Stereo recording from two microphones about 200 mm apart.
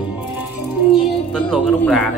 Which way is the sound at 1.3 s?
5° left (ahead or behind).